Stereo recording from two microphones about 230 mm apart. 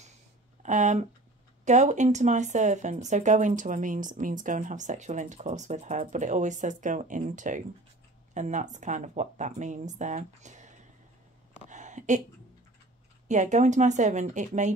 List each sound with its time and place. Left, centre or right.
0.6 s speech: right
11.7 s a sound: right
13.3 s speech: right